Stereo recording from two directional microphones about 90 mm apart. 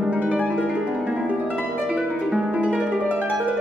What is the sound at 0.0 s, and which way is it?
Harp, 10° right (ahead or behind).